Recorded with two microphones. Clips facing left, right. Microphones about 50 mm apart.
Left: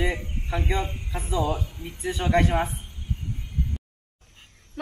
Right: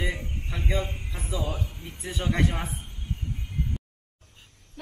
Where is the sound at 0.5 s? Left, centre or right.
Centre.